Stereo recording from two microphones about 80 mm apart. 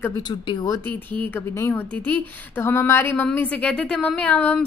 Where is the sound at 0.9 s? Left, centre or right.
Left.